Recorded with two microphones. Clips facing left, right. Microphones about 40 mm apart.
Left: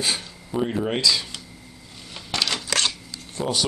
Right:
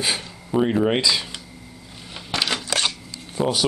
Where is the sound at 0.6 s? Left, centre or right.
Right.